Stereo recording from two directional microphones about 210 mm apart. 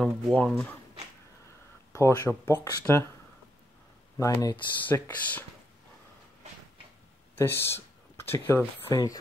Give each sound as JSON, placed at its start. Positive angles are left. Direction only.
{"t": 0.0, "sound": "speech", "side_deg": 5}
{"t": 1.9, "sound": "speech", "side_deg": 15}
{"t": 4.4, "sound": "speech", "side_deg": 15}
{"t": 7.3, "sound": "a sound", "side_deg": 10}
{"t": 8.8, "sound": "speech", "side_deg": 15}